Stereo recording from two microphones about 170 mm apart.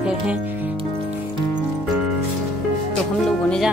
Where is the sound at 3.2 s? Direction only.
5° left (ahead or behind).